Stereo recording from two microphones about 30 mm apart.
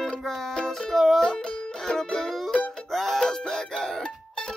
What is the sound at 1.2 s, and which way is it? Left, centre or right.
Music, centre.